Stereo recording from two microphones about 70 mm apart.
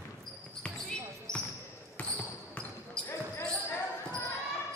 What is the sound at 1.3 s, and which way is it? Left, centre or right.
Basketball bounce, left.